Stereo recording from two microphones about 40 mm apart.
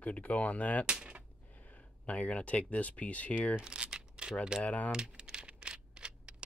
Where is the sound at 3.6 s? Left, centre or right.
Right.